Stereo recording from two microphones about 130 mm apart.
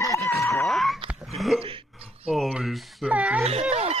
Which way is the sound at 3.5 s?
55° right (ahead or behind).